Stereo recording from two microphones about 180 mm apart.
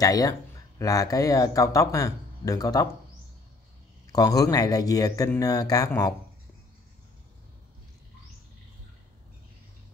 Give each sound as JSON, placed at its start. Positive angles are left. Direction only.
{"t": 0.0, "sound": "speech", "side_deg": 20}
{"t": 4.1, "sound": "speech", "side_deg": 20}